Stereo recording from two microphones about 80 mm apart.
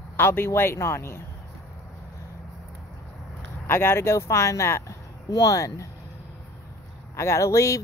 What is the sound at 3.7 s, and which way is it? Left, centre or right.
Speech, left.